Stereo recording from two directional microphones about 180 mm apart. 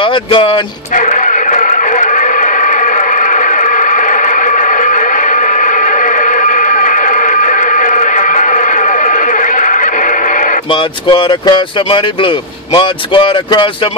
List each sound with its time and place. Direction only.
0.0 s speech: 30° left (ahead or behind)
0.9 s music: 45° left (ahead or behind)
10.7 s speech: 30° left (ahead or behind)